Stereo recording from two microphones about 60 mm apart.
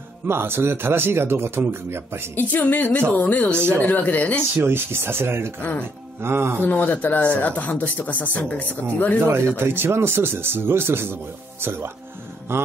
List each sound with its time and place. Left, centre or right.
0.3 s speech: right
2.3 s speech: left
4.6 s speech: right
5.6 s speech: left
6.2 s speech: right
6.6 s speech: left
9.2 s speech: right